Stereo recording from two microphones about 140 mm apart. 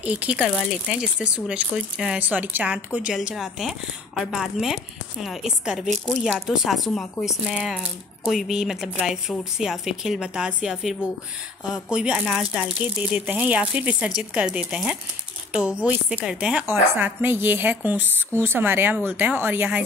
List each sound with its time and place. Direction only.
0.0 s speech: 10° right (ahead or behind)